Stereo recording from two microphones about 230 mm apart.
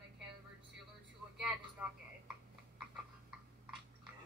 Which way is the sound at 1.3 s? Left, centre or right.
Centre.